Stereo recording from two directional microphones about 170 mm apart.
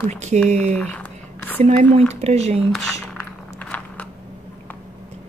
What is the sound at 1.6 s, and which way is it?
Speech, 40° right (ahead or behind).